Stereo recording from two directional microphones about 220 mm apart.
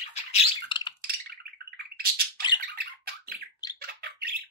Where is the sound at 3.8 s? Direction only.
45° right (ahead or behind).